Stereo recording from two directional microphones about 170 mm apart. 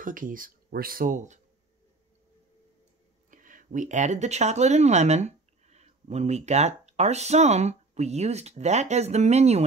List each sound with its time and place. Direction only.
0.0 s speech: 50° right (ahead or behind)
3.3 s speech: 50° right (ahead or behind)